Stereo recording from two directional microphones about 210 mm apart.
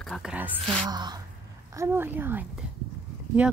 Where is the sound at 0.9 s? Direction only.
20° right (ahead or behind).